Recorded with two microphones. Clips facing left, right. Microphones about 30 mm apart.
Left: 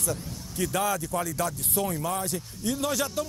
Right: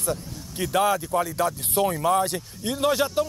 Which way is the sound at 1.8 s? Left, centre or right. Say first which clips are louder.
Right 6 dB; right.